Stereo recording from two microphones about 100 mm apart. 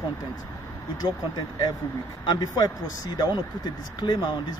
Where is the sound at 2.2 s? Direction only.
45° left (ahead or behind).